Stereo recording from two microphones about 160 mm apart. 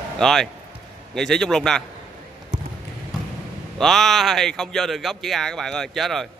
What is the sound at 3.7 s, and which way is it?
A man's voice, centre (ahead or behind).